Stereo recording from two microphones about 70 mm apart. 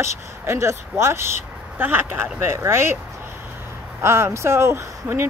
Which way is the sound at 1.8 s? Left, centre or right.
Right.